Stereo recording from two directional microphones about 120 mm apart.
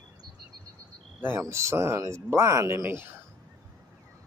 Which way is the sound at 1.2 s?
20° right (ahead or behind).